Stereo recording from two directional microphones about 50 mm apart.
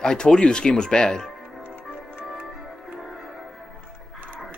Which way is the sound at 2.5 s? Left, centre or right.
Centre.